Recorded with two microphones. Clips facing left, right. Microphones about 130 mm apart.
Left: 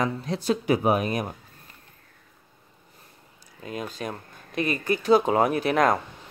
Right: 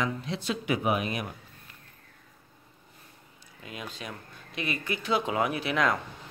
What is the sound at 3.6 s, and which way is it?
Speech, 40° left (ahead or behind).